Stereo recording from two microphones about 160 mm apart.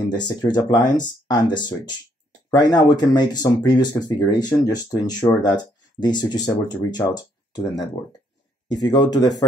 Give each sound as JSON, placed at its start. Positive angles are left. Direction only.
{"t": 0.1, "sound": "speech", "side_deg": 25}